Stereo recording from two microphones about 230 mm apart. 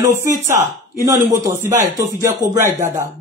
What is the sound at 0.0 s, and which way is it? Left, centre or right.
Speech, centre.